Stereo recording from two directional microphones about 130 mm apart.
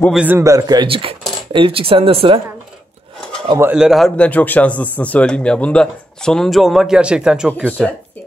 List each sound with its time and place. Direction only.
0.1 s a man's voice: 10° right (ahead or behind)
0.4 s speech: 25° right (ahead or behind)
0.8 s speech: 45° right (ahead or behind)
3.7 s a man's voice: 5° right (ahead or behind)
4.2 s speech: 10° left (ahead or behind); by 7.7 s 10° right (ahead or behind)